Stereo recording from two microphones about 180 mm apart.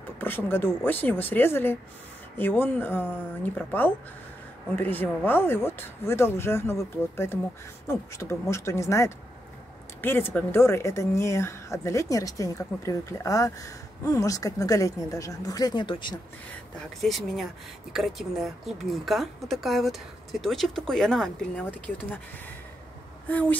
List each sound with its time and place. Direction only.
0.2 s a woman's voice: 10° left (ahead or behind)
17.0 s a woman's voice: centre (ahead or behind)
23.2 s a woman's voice: 10° left (ahead or behind)